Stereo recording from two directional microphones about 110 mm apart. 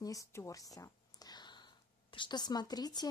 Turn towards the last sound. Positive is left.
turn(degrees=35)  # may be behind; listen again after turning